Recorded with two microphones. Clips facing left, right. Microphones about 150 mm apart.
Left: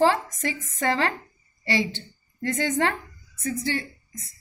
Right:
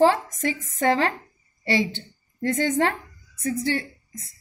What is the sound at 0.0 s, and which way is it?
A woman's voice, 50° right (ahead or behind).